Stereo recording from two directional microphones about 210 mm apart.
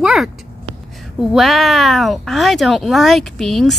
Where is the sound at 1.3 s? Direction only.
Centre (ahead or behind).